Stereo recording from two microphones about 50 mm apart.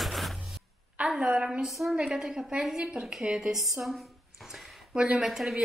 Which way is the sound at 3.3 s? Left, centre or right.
Centre.